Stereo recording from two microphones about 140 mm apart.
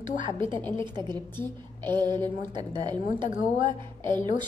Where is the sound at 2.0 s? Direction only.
30° right (ahead or behind).